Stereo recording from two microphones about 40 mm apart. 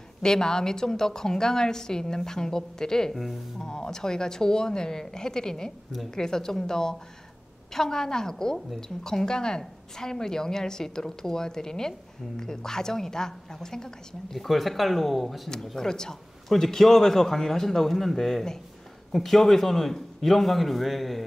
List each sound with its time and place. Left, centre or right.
0.2 s a woman's voice: centre
3.1 s a man's voice: centre
3.6 s a woman's voice: centre
14.4 s a man's voice: centre